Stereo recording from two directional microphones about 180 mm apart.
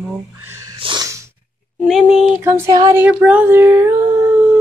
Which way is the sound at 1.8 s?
Centre (ahead or behind).